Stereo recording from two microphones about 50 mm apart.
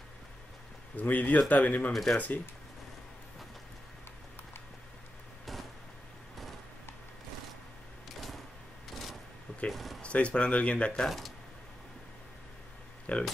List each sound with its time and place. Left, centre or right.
0.9 s speech: left
1.9 s speech: centre
2.1 s speech: left
9.7 s a sound: centre
10.0 s speech: left
11.1 s speech: centre
13.1 s speech: left